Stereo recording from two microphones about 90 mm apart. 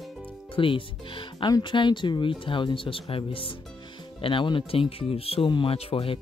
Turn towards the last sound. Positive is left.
turn(degrees=90)